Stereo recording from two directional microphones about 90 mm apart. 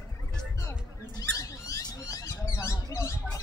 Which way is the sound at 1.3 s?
40° left (ahead or behind).